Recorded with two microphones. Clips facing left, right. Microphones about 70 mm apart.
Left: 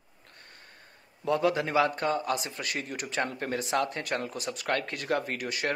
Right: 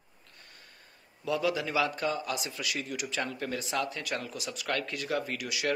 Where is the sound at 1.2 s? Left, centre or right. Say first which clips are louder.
Left 3 dB; left.